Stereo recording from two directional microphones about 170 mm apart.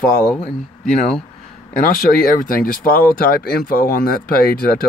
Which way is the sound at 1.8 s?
55° left (ahead or behind).